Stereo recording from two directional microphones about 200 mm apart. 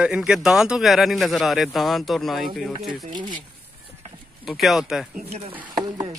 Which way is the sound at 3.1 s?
25° right (ahead or behind).